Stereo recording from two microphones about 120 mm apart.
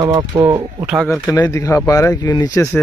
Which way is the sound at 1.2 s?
15° left (ahead or behind).